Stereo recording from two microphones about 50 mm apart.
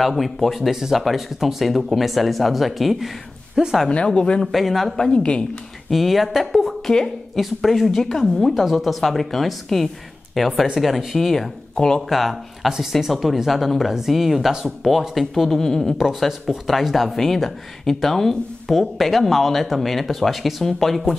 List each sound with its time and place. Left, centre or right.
0.0 s speech: centre
3.9 s a woman's voice: centre
4.5 s speech: centre
5.1 s a woman's voice: left
5.9 s speech: centre
12.1 s speech: centre
16.0 s speech: centre